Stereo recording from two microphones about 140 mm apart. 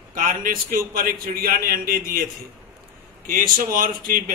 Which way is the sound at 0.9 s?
90° right.